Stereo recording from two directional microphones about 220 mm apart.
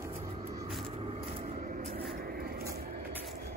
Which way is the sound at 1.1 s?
35° right (ahead or behind).